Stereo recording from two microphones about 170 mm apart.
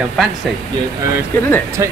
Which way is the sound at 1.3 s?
10° left (ahead or behind).